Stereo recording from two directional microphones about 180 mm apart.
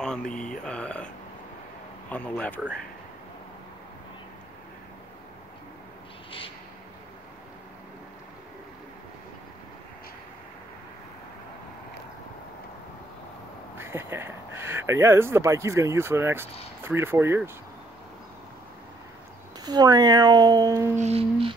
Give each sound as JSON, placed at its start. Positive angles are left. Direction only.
{"t": 0.0, "sound": "speech", "side_deg": 5}
{"t": 13.7, "sound": "speech", "side_deg": -15}
{"t": 19.6, "sound": "speech", "side_deg": -20}
{"t": 21.0, "sound": "music", "side_deg": -35}